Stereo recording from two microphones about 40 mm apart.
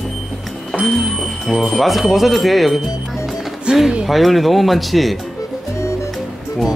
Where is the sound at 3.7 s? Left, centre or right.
Right.